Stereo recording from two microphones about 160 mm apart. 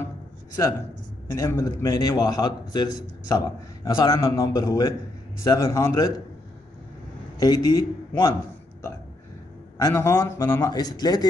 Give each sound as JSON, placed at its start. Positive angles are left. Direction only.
{"t": 1.2, "sound": "a man's voice", "side_deg": 15}
{"t": 7.3, "sound": "a man's voice", "side_deg": 25}
{"t": 9.8, "sound": "a man's voice", "side_deg": 20}